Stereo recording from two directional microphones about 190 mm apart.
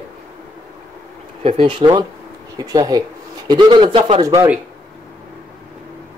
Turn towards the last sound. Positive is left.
turn(degrees=-30)  # may be behind; listen again after turning